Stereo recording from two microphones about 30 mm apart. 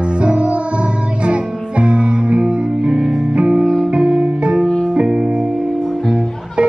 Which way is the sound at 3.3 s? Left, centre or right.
Right.